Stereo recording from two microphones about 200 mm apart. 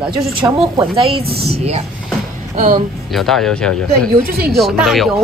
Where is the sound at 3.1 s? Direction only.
Centre (ahead or behind).